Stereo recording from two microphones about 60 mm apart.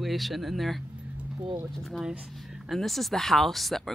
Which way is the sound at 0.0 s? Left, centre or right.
Centre.